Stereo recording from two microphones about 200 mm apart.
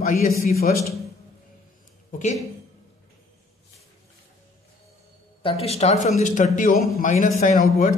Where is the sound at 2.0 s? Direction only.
35° left (ahead or behind).